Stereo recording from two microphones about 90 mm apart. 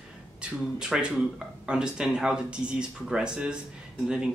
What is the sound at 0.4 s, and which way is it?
Speech, 10° right (ahead or behind).